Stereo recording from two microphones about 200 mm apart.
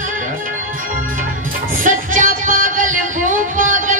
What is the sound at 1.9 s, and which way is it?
Music, 40° right (ahead or behind).